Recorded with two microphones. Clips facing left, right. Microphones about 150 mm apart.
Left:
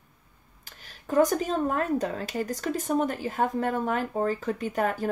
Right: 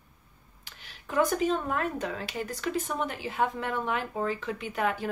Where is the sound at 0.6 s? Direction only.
40° left (ahead or behind).